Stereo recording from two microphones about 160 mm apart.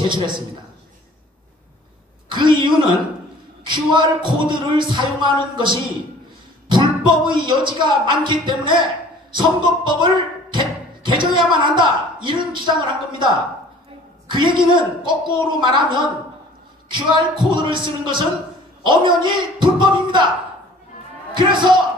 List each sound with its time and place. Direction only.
2.2 s speech: 30° right (ahead or behind)
21.4 s speech: 30° right (ahead or behind)